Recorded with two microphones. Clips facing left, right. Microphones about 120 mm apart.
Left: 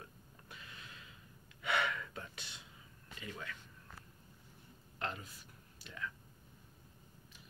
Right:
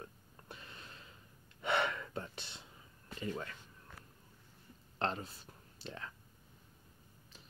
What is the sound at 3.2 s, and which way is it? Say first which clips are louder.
Speech: right 6 dB; 35° right (ahead or behind).